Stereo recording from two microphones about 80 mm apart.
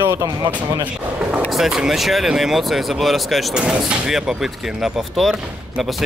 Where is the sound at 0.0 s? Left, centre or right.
Right.